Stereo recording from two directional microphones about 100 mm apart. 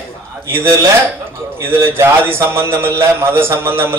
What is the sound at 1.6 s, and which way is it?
A man's voice, 25° right (ahead or behind).